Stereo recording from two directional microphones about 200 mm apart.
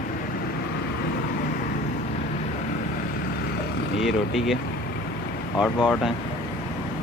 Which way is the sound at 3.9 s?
Centre (ahead or behind).